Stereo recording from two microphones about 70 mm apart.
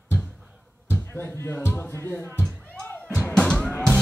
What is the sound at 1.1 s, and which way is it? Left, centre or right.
A man's voice, left.